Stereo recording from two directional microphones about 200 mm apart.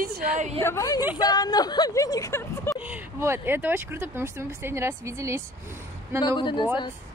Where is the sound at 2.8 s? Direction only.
10° right (ahead or behind).